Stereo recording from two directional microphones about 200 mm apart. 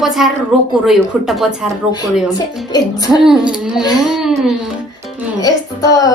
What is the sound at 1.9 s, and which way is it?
Speech, 20° left (ahead or behind).